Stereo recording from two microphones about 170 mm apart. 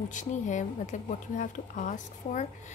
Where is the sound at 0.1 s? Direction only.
45° left (ahead or behind).